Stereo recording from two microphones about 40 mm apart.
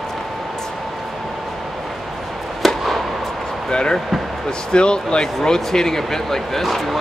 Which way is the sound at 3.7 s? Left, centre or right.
Left.